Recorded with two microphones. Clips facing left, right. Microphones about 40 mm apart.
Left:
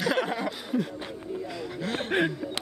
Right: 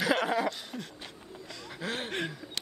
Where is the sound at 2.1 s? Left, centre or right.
Centre.